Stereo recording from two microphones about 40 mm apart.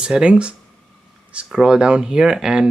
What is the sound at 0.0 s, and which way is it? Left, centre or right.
Speech, right.